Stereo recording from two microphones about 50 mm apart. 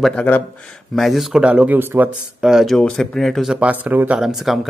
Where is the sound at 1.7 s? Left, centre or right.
Right.